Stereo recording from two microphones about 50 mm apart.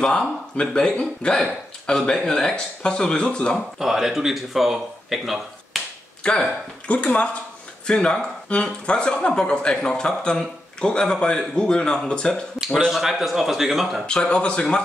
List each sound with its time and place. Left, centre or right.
0.0 s speech: centre
3.5 s speech: centre
6.2 s speech: centre
6.9 s speech: left
12.9 s speech: centre
14.0 s speech: centre